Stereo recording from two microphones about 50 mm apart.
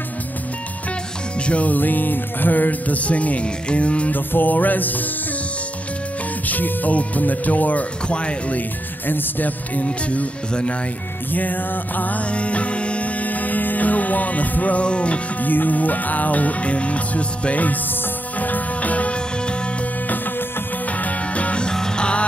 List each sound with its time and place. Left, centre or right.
1.4 s music: left
4.1 s music: left
6.4 s music: left
9.0 s music: left
11.3 s music: left
15.4 s music: left
21.0 s music: left
21.6 s music: centre